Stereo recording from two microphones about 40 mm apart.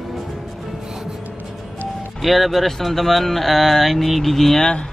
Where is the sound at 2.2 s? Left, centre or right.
Centre.